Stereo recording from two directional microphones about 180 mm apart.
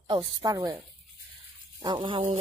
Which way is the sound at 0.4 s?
20° right (ahead or behind).